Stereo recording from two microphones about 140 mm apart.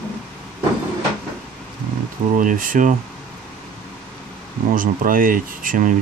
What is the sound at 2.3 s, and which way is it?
Speech, 75° right (ahead or behind).